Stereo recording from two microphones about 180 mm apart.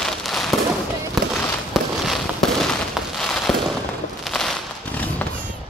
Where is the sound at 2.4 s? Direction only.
Centre (ahead or behind).